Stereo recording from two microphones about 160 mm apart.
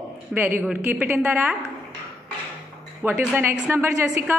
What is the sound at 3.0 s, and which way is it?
A woman's voice, 10° right (ahead or behind).